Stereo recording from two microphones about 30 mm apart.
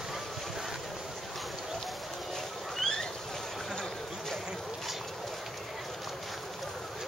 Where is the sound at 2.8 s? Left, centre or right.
Centre.